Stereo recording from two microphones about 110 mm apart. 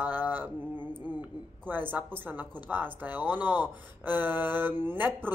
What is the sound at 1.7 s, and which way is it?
Speech, 15° right (ahead or behind).